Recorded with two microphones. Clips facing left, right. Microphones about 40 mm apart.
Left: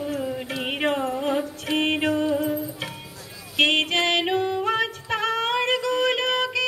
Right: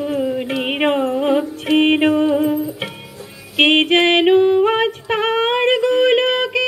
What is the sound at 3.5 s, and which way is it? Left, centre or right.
Singing, right.